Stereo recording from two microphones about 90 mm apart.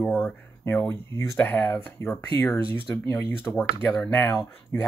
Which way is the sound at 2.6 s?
75° right (ahead or behind).